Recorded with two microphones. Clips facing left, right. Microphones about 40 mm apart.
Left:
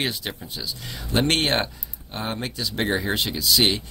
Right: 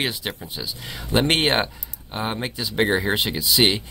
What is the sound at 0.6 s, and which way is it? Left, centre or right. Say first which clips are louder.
Speech: right 1 dB; centre.